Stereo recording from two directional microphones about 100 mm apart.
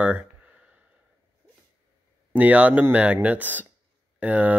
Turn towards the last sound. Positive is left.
turn(degrees=-15)  # may be behind; listen again after turning